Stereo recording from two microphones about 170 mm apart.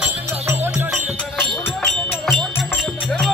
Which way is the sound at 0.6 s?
10° right (ahead or behind).